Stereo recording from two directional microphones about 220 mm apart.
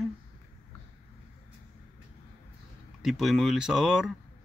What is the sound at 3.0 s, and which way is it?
Speech, centre (ahead or behind).